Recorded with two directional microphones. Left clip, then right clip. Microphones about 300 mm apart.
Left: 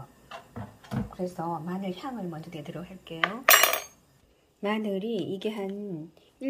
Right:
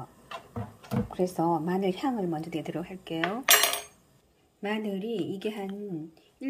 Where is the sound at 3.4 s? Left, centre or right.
Centre.